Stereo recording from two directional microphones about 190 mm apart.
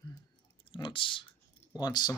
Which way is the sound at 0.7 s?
25° left (ahead or behind).